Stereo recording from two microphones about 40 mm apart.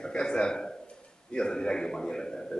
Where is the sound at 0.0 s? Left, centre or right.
Centre.